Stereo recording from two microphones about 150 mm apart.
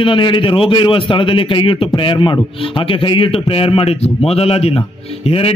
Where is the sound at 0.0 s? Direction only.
35° left (ahead or behind).